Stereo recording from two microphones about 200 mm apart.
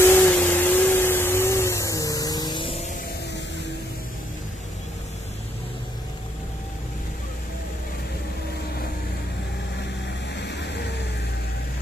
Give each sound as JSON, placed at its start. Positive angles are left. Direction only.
{"t": 0.0, "sound": "vacuum cleaner", "side_deg": 10}
{"t": 10.3, "sound": "vehicle", "side_deg": 60}